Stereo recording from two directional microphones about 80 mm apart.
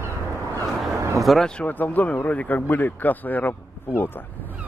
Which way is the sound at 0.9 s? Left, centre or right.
Right.